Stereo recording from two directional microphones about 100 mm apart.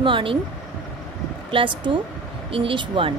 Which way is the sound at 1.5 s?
55° right (ahead or behind).